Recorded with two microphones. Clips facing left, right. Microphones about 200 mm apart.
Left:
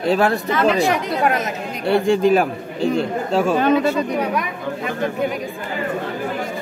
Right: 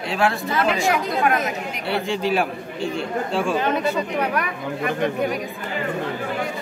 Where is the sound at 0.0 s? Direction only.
40° left (ahead or behind).